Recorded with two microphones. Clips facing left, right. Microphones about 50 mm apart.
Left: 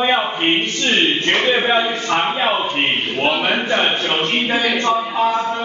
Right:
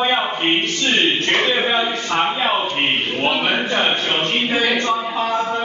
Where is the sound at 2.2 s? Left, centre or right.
Centre.